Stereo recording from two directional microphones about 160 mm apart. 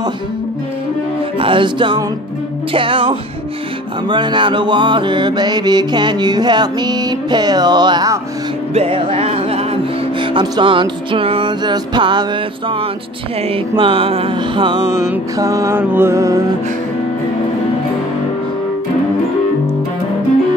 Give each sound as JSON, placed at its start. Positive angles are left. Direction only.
{"t": 1.4, "sound": "music", "side_deg": -30}
{"t": 4.1, "sound": "mantra", "side_deg": -30}
{"t": 8.7, "sound": "music", "side_deg": -35}
{"t": 15.3, "sound": "mantra", "side_deg": -20}